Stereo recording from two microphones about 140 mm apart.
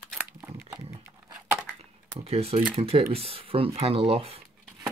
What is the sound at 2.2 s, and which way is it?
Camera, 45° right (ahead or behind).